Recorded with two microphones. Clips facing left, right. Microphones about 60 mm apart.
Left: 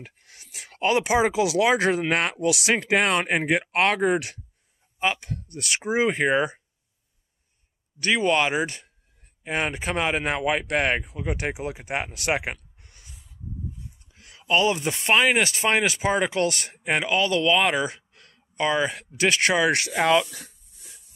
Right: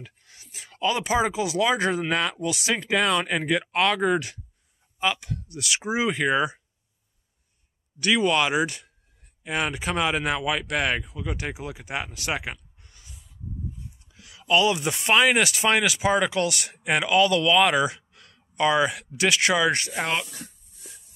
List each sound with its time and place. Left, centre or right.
0.0 s speech: left
1.3 s speech: left
1.7 s speech: left
5.0 s speech: left
5.9 s speech: left
8.0 s speech: left
14.1 s a sound: left
14.5 s speech: left
15.1 s speech: centre
15.4 s speech: left
16.7 s speech: left
17.9 s a sound: left
18.9 s speech: left
19.7 s speech: left